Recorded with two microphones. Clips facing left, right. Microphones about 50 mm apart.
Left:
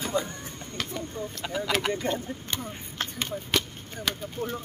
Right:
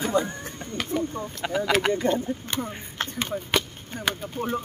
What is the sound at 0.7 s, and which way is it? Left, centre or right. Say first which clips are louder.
Speech: right 6 dB; centre.